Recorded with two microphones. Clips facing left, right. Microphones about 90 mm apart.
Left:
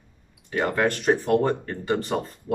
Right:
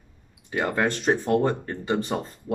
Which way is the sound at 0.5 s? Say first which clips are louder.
Left 1 dB; 20° right (ahead or behind).